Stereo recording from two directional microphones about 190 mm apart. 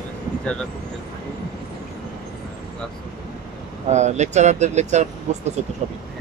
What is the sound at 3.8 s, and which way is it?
Speech, 35° right (ahead or behind).